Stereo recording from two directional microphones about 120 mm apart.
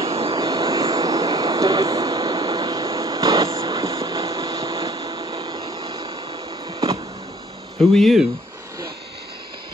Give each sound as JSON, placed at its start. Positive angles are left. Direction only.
{"t": 0.0, "sound": "vehicle", "side_deg": -55}
{"t": 0.4, "sound": "vehicle", "side_deg": -30}
{"t": 4.0, "sound": "a sound", "side_deg": -30}
{"t": 4.8, "sound": "vehicle", "side_deg": -40}
{"t": 7.9, "sound": "speech", "side_deg": 0}